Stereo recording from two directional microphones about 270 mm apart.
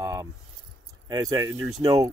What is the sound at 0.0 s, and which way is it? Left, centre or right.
Keys jangling, centre.